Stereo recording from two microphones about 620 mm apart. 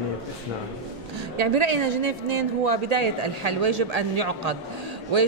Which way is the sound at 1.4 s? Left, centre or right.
Right.